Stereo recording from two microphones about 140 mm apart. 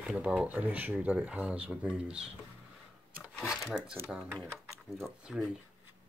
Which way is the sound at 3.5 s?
5° right (ahead or behind).